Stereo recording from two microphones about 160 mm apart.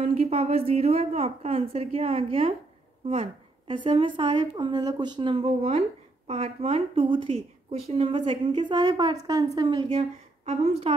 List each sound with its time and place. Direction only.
0.0 s a woman's voice: 40° right (ahead or behind)